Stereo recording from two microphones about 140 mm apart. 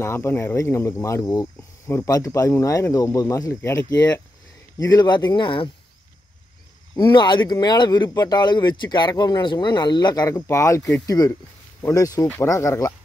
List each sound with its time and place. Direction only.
0.0 s speech: 15° left (ahead or behind); by 5.7 s 35° left (ahead or behind)
7.0 s speech: 35° left (ahead or behind)